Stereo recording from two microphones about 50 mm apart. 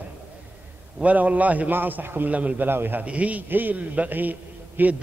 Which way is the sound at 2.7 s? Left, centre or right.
Right.